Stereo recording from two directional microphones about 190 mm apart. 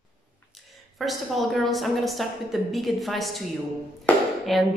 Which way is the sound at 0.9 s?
Centre (ahead or behind).